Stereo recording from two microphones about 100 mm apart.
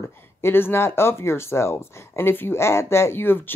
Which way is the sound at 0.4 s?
20° left (ahead or behind).